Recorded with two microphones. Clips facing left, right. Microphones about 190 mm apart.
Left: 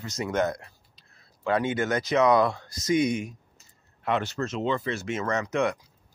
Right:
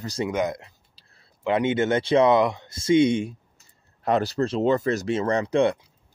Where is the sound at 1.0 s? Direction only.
30° right (ahead or behind).